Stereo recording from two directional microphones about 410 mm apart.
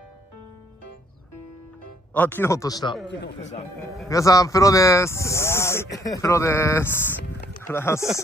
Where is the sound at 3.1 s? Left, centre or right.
Left.